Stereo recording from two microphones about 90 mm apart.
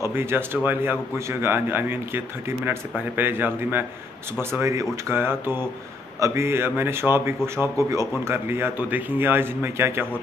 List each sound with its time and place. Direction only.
0.0 s speech: 25° right (ahead or behind)